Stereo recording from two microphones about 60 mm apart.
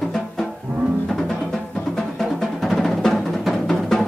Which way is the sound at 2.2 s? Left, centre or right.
Centre.